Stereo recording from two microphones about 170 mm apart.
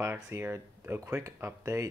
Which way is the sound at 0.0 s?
15° right (ahead or behind).